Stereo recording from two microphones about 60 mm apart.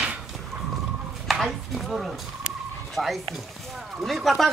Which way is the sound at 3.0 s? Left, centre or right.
Centre.